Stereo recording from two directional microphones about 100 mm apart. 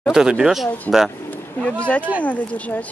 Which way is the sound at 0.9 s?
20° left (ahead or behind).